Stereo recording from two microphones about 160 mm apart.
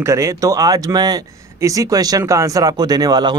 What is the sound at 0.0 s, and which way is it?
A man's voice, 20° right (ahead or behind).